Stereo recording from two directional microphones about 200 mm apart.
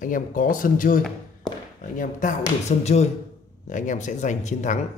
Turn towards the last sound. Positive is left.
turn(degrees=35)  # may be behind; listen again after turning